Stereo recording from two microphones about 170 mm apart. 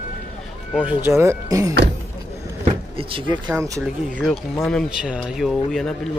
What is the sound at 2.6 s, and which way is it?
Speech, 30° right (ahead or behind).